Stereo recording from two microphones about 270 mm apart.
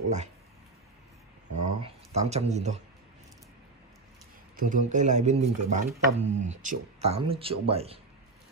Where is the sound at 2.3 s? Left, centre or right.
Right.